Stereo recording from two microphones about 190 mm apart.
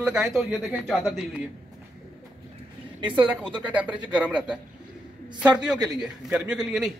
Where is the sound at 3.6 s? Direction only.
5° right (ahead or behind).